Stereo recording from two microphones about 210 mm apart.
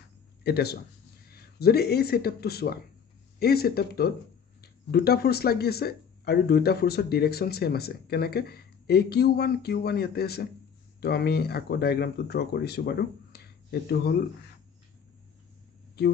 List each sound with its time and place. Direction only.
0.4 s speech: 50° left (ahead or behind)